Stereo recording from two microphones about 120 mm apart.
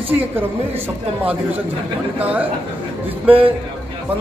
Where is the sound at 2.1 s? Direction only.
15° right (ahead or behind).